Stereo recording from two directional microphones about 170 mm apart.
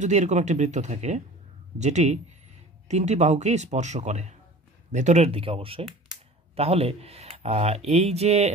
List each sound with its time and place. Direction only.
0.0 s a man's voice: 45° right (ahead or behind)